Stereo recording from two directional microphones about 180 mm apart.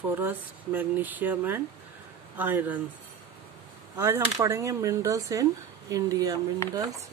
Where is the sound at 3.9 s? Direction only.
15° right (ahead or behind).